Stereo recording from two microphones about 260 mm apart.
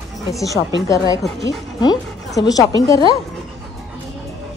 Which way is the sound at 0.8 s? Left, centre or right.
Centre.